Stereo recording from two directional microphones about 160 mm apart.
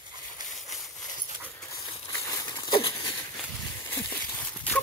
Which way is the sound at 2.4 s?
20° left (ahead or behind).